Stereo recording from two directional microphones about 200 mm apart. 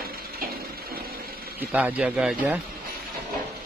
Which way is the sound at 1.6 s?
10° right (ahead or behind).